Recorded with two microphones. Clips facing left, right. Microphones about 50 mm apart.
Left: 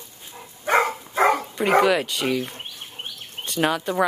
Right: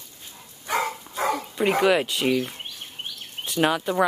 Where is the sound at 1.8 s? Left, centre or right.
Centre.